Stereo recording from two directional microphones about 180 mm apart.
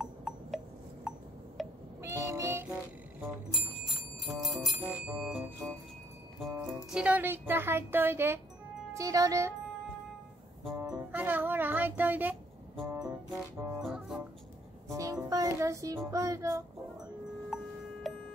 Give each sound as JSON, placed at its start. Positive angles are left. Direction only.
{"t": 0.0, "sound": "glass", "side_deg": 0}
{"t": 1.6, "sound": "music", "side_deg": 0}
{"t": 2.0, "sound": "music", "side_deg": -15}
{"t": 3.5, "sound": "bell", "side_deg": 0}
{"t": 6.5, "sound": "speech", "side_deg": -10}
{"t": 10.8, "sound": "music", "side_deg": -10}
{"t": 13.7, "sound": "music", "side_deg": -5}
{"t": 14.9, "sound": "a sound", "side_deg": -15}
{"t": 15.2, "sound": "a child's voice", "side_deg": -20}